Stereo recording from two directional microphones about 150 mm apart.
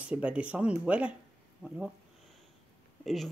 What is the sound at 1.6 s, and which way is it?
Speech, 10° left (ahead or behind).